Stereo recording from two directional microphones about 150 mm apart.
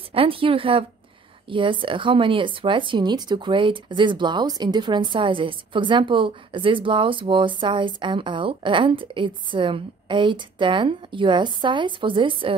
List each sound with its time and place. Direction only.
0.1 s speech: 35° right (ahead or behind)